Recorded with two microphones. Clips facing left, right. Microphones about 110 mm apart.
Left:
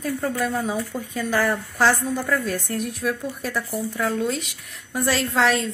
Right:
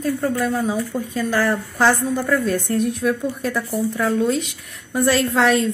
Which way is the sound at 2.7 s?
5° left (ahead or behind).